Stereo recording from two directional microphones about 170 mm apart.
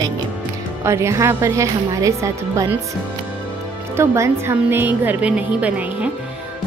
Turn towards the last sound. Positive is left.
turn(degrees=-10)  # may be behind; listen again after turning